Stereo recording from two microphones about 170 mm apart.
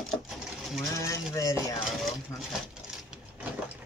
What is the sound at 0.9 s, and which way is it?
Mechanisms, 20° left (ahead or behind).